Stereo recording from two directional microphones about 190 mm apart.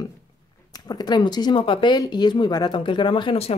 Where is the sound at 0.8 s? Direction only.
20° left (ahead or behind).